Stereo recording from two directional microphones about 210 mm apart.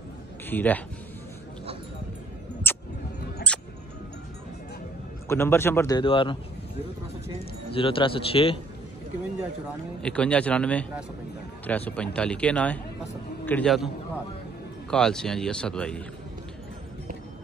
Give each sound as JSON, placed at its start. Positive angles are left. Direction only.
{"t": 0.5, "sound": "speech", "side_deg": 10}
{"t": 2.6, "sound": "mouse", "side_deg": 10}
{"t": 3.5, "sound": "music", "side_deg": 5}
{"t": 5.3, "sound": "speech", "side_deg": 10}
{"t": 7.7, "sound": "a man's voice", "side_deg": 25}
{"t": 10.0, "sound": "speech", "side_deg": 5}
{"t": 14.9, "sound": "speech", "side_deg": 5}